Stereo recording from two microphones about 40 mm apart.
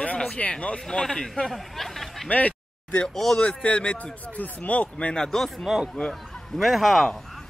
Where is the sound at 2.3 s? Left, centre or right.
Left.